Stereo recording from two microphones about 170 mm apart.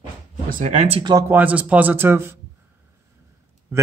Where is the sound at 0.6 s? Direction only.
40° right (ahead or behind).